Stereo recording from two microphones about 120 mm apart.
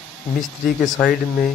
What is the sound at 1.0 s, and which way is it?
Speech, 5° left (ahead or behind).